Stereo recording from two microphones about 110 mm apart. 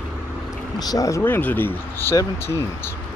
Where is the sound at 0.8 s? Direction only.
35° left (ahead or behind).